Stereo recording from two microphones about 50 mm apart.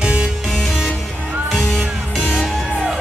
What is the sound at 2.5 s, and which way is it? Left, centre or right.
Music, centre.